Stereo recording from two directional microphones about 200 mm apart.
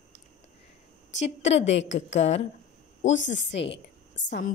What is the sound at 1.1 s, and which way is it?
A woman's voice, 65° left (ahead or behind).